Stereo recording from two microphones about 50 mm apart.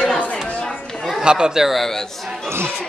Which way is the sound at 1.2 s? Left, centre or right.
Centre.